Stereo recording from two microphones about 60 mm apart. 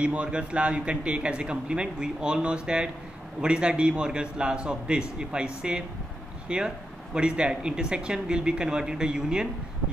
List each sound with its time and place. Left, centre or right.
0.0 s a man's voice: centre